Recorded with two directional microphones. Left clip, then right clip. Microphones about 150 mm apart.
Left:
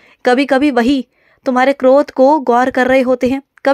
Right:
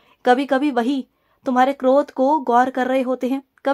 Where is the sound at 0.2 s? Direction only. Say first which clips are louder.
Left 5 dB; 25° left (ahead or behind).